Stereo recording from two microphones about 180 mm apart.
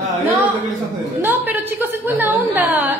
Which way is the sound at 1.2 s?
10° right (ahead or behind).